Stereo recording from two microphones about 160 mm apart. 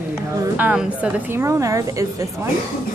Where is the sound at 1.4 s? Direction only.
20° right (ahead or behind).